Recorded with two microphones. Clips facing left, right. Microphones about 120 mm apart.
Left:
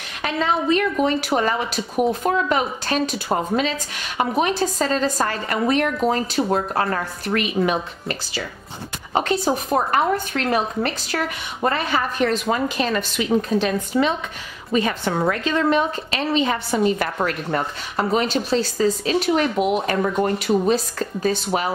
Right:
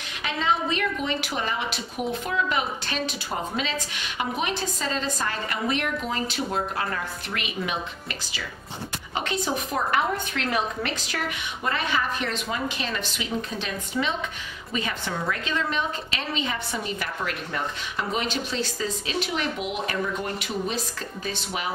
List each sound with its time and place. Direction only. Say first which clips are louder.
0.2 s a woman's voice: left 4 dB; 45° left (ahead or behind)